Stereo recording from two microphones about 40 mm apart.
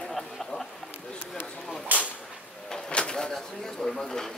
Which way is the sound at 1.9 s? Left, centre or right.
Right.